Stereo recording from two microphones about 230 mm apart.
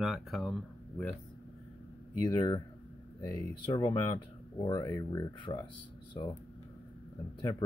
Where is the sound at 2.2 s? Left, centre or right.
Centre.